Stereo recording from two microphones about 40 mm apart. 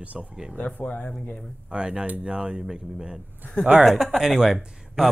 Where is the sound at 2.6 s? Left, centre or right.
Centre.